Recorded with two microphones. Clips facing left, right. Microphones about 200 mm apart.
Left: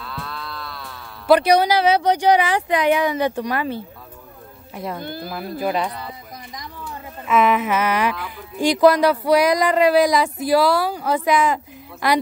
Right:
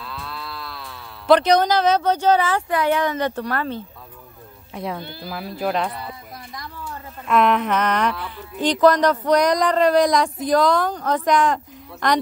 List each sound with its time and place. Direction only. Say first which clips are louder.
0.0 s moo: left 1 dB; centre (ahead or behind)
4.7 s speech: right 1 dB; centre (ahead or behind)
5.0 s speech: left 5 dB; 50° left (ahead or behind)
5.3 s speech: even; centre (ahead or behind)
7.2 s a woman's voice: even; 5° left (ahead or behind)